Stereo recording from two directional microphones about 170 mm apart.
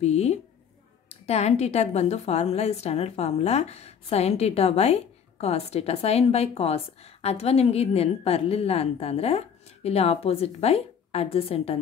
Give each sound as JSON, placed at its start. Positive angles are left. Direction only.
{"t": 0.0, "sound": "a woman's voice", "side_deg": 40}